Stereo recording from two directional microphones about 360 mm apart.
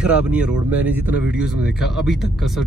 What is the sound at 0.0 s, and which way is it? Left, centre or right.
Speech, centre.